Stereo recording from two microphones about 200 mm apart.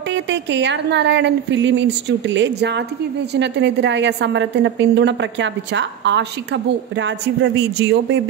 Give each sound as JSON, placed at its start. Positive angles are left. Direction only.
{"t": 0.1, "sound": "a woman's voice", "side_deg": -60}